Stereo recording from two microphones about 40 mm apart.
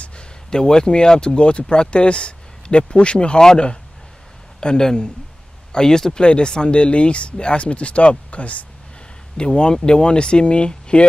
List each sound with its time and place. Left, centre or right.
0.5 s speech: centre; by 8.6 s left
9.4 s speech: left